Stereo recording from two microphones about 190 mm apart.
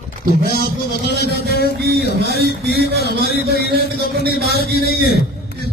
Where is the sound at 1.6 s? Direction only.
55° right (ahead or behind).